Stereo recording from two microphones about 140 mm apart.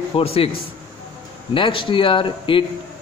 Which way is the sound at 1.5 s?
35° left (ahead or behind).